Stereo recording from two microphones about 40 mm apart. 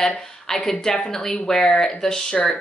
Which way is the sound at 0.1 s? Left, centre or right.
Centre.